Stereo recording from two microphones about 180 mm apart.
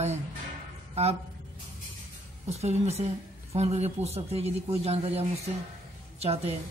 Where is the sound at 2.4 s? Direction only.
35° right (ahead or behind).